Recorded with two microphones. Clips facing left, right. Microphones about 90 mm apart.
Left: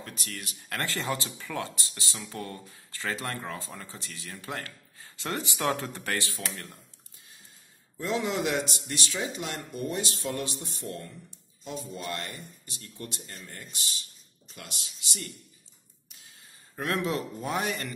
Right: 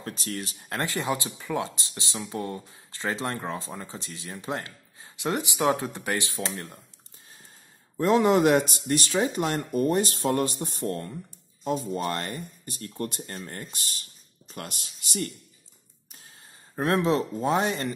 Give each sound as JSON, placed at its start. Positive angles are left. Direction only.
{"t": 0.0, "sound": "speech", "side_deg": -35}
{"t": 0.7, "sound": "speech", "side_deg": -20}
{"t": 8.0, "sound": "speech", "side_deg": -50}
{"t": 16.1, "sound": "a sound", "side_deg": -40}
{"t": 16.7, "sound": "speech", "side_deg": -30}